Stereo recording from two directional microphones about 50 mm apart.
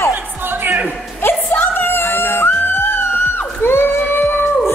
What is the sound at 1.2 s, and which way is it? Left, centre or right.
Music, left.